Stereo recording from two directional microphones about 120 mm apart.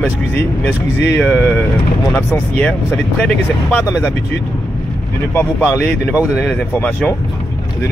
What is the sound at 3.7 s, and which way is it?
Speech, 25° left (ahead or behind).